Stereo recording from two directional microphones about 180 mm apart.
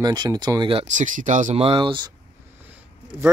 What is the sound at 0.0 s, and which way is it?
Speech, 20° right (ahead or behind).